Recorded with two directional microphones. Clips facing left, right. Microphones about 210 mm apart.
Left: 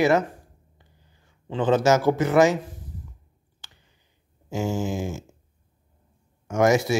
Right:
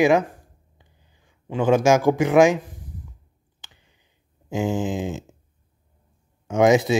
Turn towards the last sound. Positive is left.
turn(degrees=-20)  # may be behind; listen again after turning